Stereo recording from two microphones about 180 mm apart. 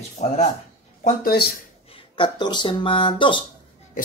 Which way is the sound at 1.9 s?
30° left (ahead or behind).